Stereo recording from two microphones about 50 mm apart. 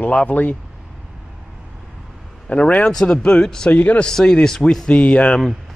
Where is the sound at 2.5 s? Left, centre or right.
Left.